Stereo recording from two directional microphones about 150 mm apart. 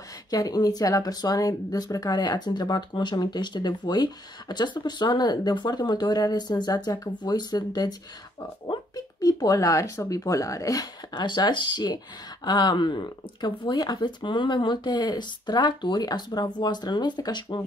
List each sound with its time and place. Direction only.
0.3 s speech: 25° left (ahead or behind)